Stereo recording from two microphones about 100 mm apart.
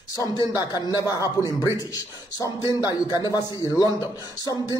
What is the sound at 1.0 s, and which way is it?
A man's voice, 35° left (ahead or behind).